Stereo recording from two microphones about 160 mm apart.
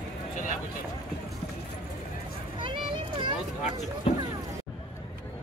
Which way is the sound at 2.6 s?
30° right (ahead or behind).